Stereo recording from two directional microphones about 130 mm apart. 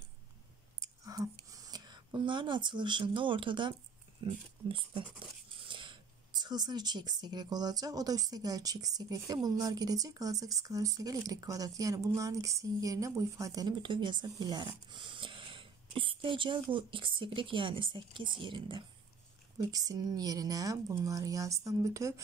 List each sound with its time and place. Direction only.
0.7 s whispering: 25° right (ahead or behind)
1.5 s speech: 30° right (ahead or behind)
5.7 s coin: 40° right (ahead or behind)
6.4 s speech: 35° right (ahead or behind)
19.7 s speech: 30° right (ahead or behind)